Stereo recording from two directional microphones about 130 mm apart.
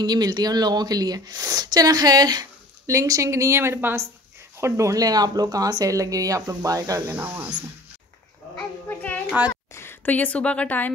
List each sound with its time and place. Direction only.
0.0 s speech: 30° right (ahead or behind)
7.2 s speech: 15° right (ahead or behind)
8.5 s child singing: 10° left (ahead or behind)
9.5 s a woman's voice: 20° left (ahead or behind)